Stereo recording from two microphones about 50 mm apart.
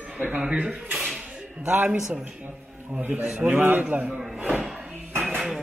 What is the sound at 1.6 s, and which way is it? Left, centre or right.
Speech, right.